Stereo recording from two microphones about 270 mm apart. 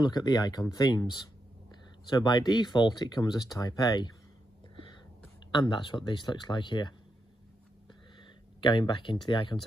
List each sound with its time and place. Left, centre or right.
0.0 s speech: centre
5.5 s speech: centre
8.2 s speech: centre